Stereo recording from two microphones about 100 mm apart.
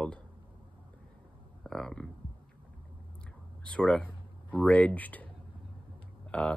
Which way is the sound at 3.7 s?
10° left (ahead or behind).